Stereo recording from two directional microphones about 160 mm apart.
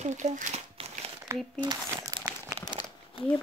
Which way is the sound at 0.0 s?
50° right (ahead or behind).